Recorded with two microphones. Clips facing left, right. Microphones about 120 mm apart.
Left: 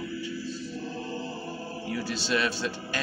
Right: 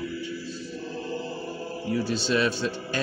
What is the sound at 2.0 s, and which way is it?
Speech, 35° right (ahead or behind).